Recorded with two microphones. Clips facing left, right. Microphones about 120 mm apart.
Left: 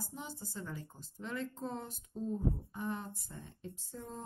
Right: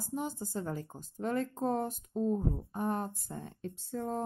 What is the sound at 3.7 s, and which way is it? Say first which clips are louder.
Speech: right 11 dB; 65° right (ahead or behind).